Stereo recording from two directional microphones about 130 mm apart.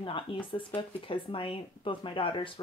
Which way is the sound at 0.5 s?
40° left (ahead or behind).